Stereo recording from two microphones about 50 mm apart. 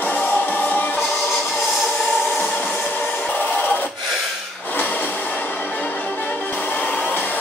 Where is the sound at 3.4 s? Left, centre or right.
Left.